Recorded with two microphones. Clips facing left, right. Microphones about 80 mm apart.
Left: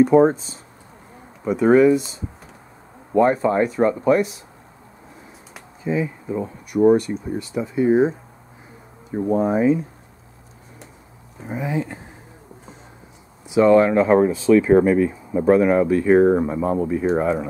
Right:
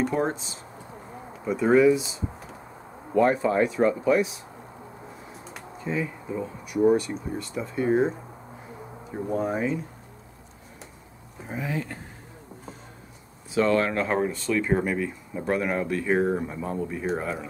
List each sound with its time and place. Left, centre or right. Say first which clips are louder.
0.0 s speech: left 12 dB; centre
5.5 s a sound: left 6 dB; centre
7.0 s speech: left 5 dB; centre
9.4 s speech: left 9 dB; centre
11.4 s speech: left 6 dB; centre
13.5 s speech: left 9 dB; centre
16.3 s speech: left 9 dB; centre
16.9 s speech: left 9 dB; centre